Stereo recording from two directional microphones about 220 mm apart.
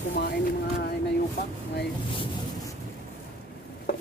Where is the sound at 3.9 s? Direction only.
45° left (ahead or behind).